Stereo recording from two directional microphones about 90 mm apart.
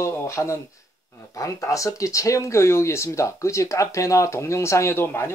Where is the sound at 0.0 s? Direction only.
30° left (ahead or behind).